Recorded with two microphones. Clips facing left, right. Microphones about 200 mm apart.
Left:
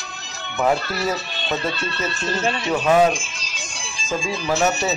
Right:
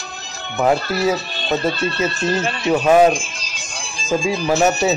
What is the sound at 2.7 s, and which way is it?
Speech, 15° right (ahead or behind).